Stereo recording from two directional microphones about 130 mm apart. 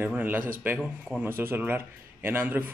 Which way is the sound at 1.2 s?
15° right (ahead or behind).